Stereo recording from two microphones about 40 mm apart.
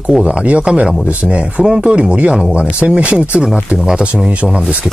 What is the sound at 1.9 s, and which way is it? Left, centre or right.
Speech, right.